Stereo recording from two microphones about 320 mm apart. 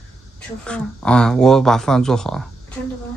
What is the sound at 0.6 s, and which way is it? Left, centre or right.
Speech, centre.